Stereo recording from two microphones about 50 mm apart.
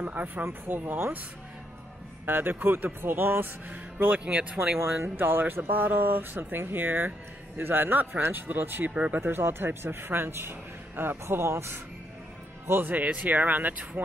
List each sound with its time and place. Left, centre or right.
0.0 s speech: right
0.5 s a man's voice: right
2.2 s a man's voice: right
4.7 s a man's voice: right
12.9 s speech: right